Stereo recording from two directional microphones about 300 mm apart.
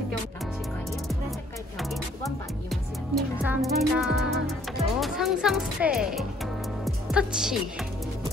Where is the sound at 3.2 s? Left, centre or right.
Centre.